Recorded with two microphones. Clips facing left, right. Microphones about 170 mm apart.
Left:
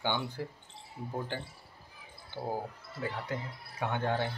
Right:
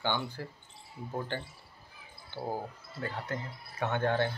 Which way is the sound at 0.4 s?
15° left (ahead or behind).